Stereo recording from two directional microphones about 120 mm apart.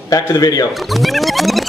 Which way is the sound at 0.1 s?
30° left (ahead or behind).